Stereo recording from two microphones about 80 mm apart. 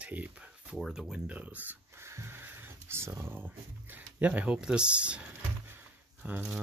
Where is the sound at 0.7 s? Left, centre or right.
Centre.